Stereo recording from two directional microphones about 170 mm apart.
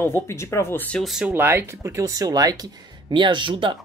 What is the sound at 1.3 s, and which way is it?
Speech, 15° right (ahead or behind).